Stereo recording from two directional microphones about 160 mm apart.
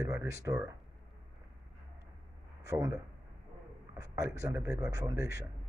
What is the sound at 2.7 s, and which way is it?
Speech, 20° right (ahead or behind).